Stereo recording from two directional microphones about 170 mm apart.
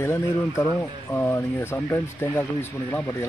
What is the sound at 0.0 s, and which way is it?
Speech, 15° left (ahead or behind).